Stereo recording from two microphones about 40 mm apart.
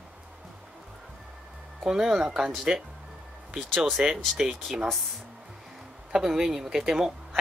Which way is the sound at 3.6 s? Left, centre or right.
Centre.